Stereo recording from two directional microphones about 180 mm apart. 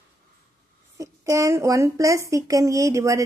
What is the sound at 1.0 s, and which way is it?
A woman's voice, 15° right (ahead or behind).